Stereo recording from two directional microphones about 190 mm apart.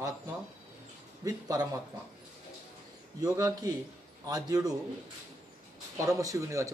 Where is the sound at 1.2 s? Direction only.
20° right (ahead or behind).